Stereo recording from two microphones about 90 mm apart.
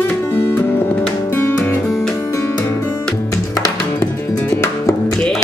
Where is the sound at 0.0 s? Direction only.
20° left (ahead or behind).